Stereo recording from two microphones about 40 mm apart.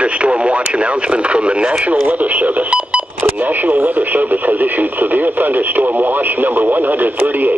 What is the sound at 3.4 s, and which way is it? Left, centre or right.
Speech, right.